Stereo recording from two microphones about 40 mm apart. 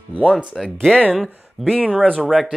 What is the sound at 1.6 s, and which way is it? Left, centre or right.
Speech, centre.